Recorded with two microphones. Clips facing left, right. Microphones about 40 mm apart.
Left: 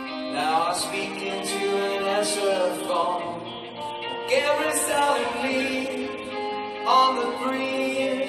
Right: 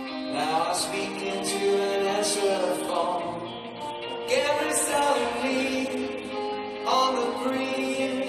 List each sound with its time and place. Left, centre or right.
0.4 s music: centre
4.3 s music: centre
6.9 s music: centre